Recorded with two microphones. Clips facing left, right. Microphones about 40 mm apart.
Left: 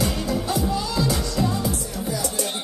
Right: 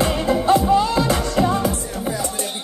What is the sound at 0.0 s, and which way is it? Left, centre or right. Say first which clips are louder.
Music: right 6 dB; right.